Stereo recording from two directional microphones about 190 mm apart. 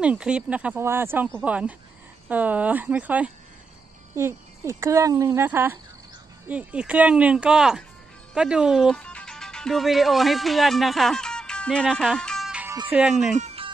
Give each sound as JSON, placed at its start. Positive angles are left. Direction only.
{"t": 0.0, "sound": "speech", "side_deg": -5}
{"t": 12.6, "sound": "music", "side_deg": -20}
{"t": 12.9, "sound": "speech", "side_deg": 0}
{"t": 13.4, "sound": "music", "side_deg": -30}